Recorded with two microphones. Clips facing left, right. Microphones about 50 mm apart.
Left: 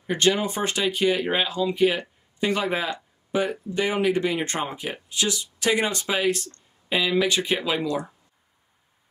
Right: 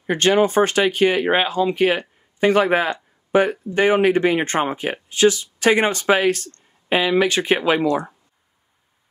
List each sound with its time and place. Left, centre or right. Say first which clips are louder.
0.0 s speech: right 6 dB; right